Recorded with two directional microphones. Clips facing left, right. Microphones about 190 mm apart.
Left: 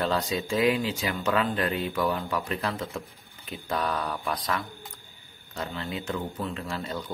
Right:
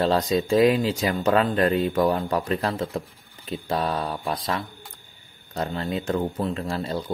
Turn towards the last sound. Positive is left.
turn(degrees=-35)  # may be behind; listen again after turning